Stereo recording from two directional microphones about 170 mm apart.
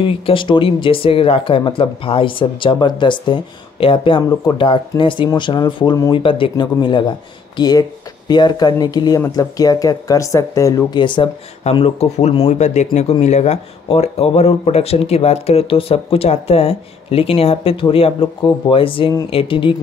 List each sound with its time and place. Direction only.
0.0 s speech: 30° left (ahead or behind)